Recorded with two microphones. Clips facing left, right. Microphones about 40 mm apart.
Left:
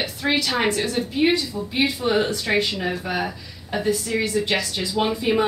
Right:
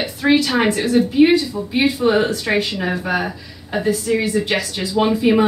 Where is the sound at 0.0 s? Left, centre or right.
Centre.